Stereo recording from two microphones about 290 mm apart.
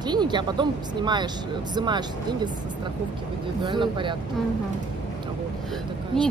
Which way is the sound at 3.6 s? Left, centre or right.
Centre.